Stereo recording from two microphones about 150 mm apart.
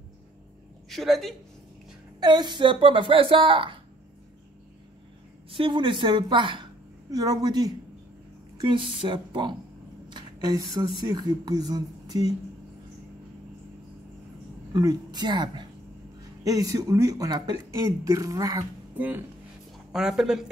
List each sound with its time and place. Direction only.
0.8 s a woman's voice: centre (ahead or behind)
2.1 s a woman's voice: 30° right (ahead or behind)
5.5 s a woman's voice: 35° right (ahead or behind)
14.7 s speech: 25° right (ahead or behind)
18.9 s speech: 10° right (ahead or behind)